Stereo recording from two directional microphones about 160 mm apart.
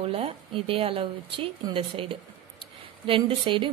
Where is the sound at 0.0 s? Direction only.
35° right (ahead or behind).